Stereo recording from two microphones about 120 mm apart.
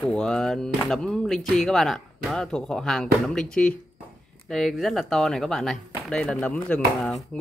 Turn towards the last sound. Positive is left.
turn(degrees=5)  # may be behind; listen again after turning